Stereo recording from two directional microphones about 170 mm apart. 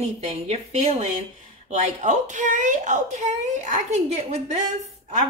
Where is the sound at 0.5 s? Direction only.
40° right (ahead or behind).